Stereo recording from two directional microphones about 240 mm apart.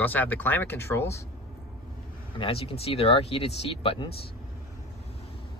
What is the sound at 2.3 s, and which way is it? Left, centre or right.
Speech, left.